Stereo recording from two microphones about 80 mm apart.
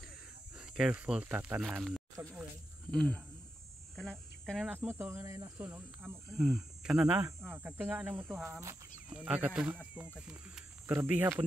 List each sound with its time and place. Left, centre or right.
0.6 s cricket: centre
0.9 s speech: centre
1.6 s speech: centre
3.9 s a sound: centre
4.6 s speech: right
6.3 s speech: centre
7.5 s speech: right
8.5 s speech: right
9.1 s speech: centre
10.9 s speech: right